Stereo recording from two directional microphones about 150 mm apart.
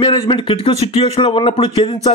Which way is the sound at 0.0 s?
35° left (ahead or behind).